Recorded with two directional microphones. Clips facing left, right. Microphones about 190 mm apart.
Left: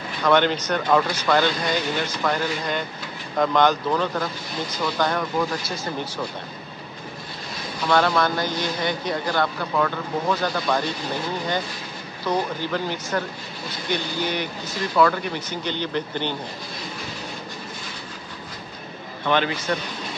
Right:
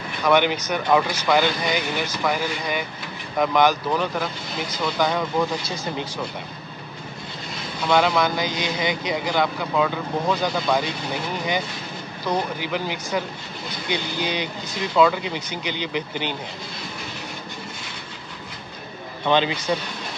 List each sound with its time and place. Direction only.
0.2 s speech: 10° right (ahead or behind)
7.9 s speech: 10° right (ahead or behind)
19.2 s speech: 20° right (ahead or behind)